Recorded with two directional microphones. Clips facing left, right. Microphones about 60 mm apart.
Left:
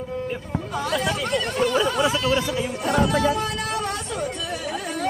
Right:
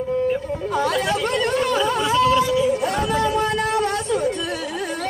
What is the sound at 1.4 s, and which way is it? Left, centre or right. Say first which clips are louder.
Speech: right 2 dB; right.